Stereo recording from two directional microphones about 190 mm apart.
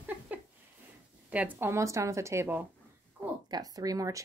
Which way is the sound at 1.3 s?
10° right (ahead or behind).